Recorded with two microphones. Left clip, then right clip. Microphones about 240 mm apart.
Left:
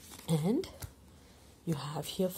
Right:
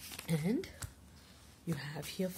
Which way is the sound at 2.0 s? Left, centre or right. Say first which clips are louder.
Left 7 dB; centre.